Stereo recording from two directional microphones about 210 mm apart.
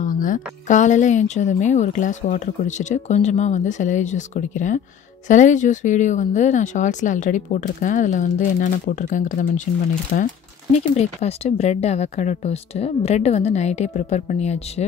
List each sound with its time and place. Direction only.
0.0 s speech: 40° left (ahead or behind)